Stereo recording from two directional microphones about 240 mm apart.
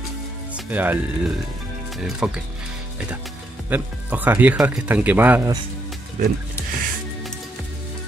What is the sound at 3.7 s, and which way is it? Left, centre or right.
Speech, centre.